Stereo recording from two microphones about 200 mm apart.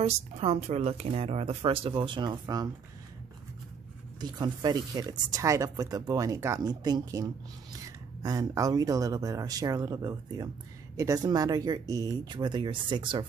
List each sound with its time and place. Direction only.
0.0 s speech: 30° right (ahead or behind)
4.2 s speech: 20° right (ahead or behind)